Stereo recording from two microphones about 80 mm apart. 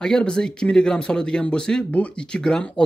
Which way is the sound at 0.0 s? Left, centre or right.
Centre.